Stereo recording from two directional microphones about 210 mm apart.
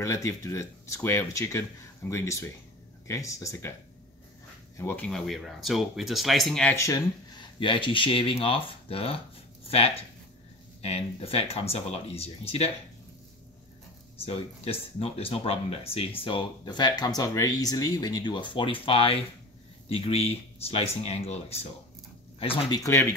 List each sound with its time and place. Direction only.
0.0 s speech: 15° left (ahead or behind)
4.7 s speech: 10° left (ahead or behind); by 12.7 s 30° left (ahead or behind)
14.2 s speech: 30° left (ahead or behind)